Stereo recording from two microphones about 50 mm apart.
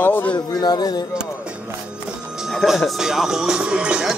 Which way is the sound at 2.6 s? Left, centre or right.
Centre.